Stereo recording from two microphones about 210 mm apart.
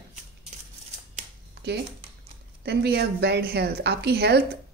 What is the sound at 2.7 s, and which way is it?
A woman's voice, 50° right (ahead or behind).